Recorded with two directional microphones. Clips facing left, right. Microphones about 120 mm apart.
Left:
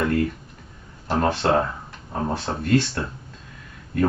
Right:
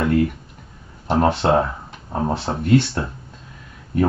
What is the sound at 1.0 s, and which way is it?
Speech, 20° right (ahead or behind).